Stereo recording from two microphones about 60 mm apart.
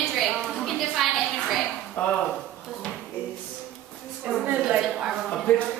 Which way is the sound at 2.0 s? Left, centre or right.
Left.